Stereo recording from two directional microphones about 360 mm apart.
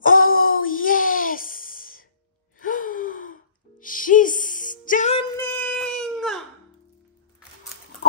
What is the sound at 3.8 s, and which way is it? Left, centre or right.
Music, left.